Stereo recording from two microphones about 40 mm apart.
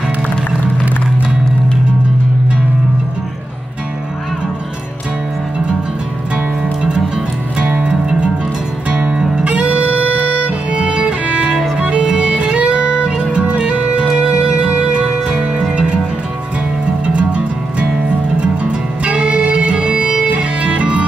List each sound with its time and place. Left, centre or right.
6.6 s music: centre
9.1 s music: centre
9.4 s music: right
17.0 s music: right